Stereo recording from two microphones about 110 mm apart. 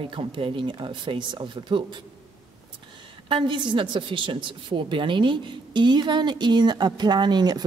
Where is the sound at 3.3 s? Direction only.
45° right (ahead or behind).